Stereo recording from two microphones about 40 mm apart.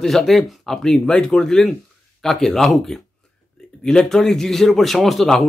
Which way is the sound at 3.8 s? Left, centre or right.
Centre.